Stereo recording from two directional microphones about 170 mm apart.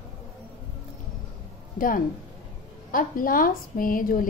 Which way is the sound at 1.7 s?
55° left (ahead or behind).